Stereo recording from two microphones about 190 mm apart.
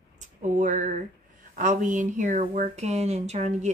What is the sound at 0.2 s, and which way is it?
Speech, 40° right (ahead or behind).